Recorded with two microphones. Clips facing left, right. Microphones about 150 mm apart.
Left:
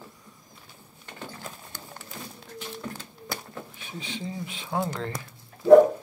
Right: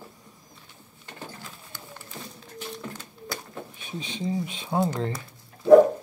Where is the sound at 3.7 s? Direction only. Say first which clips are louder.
Right 1 dB; 20° right (ahead or behind).